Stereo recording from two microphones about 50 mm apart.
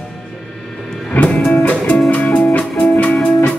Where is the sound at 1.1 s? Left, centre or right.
Left.